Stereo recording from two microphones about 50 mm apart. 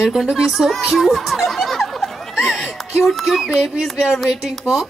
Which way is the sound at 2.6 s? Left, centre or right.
Centre.